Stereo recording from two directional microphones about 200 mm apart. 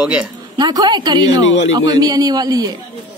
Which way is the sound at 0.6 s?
20° right (ahead or behind).